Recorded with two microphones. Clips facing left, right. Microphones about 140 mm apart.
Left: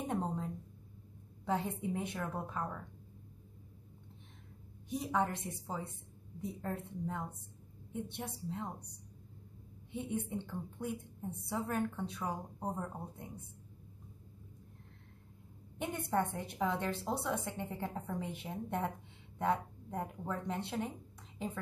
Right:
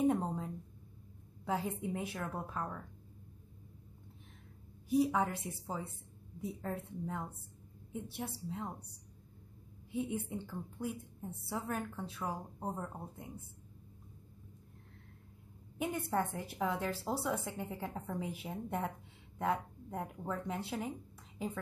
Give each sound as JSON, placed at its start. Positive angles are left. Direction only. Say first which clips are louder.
{"t": 0.0, "sound": "a sound", "louder": "right 5 dB", "side_deg": 0}
{"t": 1.4, "sound": "a woman's voice", "louder": "left 1 dB", "side_deg": -5}
{"t": 4.8, "sound": "a woman's voice", "louder": "right 4 dB", "side_deg": -5}
{"t": 9.8, "sound": "a woman's voice", "louder": "right 1 dB", "side_deg": 0}
{"t": 15.8, "sound": "a woman's voice", "louder": "even", "side_deg": 0}